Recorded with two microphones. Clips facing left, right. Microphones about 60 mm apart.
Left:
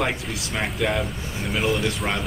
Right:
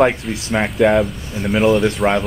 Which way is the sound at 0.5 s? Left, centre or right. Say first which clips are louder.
Right 10 dB; right.